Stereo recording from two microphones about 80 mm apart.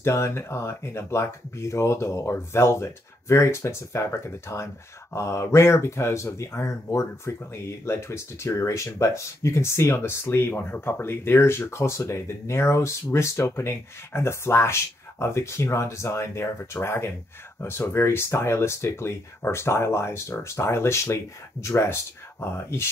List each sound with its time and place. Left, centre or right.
0.0 s speech: left